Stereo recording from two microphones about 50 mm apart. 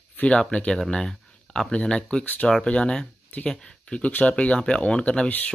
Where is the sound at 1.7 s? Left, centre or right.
Centre.